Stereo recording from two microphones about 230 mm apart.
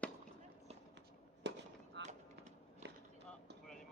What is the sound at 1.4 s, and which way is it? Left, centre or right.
Fireworks, right.